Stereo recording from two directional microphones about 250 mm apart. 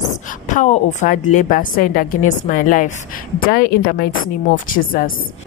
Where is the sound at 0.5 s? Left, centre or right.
Left.